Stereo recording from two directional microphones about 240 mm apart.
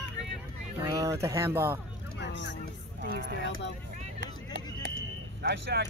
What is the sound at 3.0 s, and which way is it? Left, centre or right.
Speech, right.